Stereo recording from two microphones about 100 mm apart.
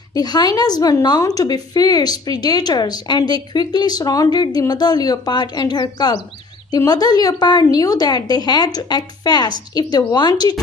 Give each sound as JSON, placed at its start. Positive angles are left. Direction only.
{"t": 0.1, "sound": "a woman's voice", "side_deg": 45}